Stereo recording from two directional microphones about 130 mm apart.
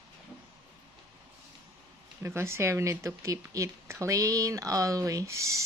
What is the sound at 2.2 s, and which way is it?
Speech, 20° right (ahead or behind).